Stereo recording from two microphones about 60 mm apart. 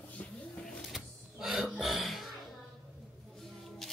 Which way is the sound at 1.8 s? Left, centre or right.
Centre.